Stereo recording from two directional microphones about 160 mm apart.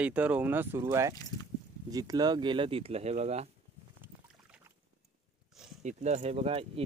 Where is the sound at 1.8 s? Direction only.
25° right (ahead or behind); by 3.4 s 40° right (ahead or behind).